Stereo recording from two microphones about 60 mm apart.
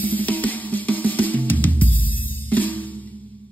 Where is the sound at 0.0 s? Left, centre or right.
Left.